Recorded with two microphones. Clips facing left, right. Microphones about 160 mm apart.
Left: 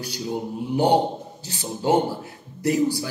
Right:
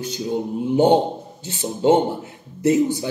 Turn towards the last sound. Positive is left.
turn(degrees=-20)  # may be behind; listen again after turning